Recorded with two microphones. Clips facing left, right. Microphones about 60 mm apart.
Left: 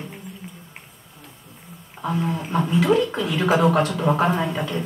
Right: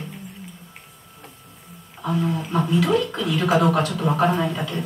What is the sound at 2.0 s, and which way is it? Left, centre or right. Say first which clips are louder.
A woman's voice: right 1 dB; left.